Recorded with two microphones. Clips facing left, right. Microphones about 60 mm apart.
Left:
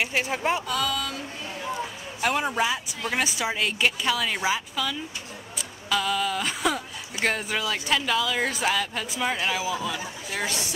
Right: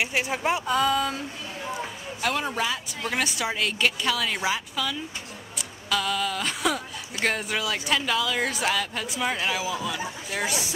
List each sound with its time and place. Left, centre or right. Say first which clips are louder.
0.0 s speech: even; centre
0.7 s speech: right 4 dB; right
2.2 s a man's voice: left 2 dB; centre